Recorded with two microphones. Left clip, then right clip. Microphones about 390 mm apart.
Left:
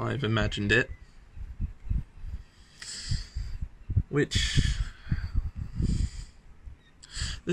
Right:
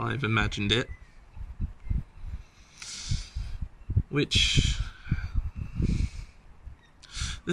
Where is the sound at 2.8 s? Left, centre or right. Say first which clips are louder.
Even; centre.